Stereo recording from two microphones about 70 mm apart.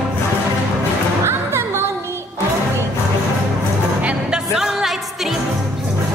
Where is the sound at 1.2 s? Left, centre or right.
Right.